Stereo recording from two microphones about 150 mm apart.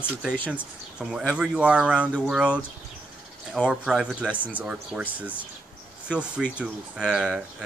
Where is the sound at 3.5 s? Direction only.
5° right (ahead or behind).